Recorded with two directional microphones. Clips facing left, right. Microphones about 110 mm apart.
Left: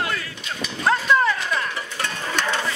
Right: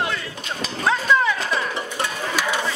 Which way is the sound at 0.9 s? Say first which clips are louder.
Even; centre (ahead or behind).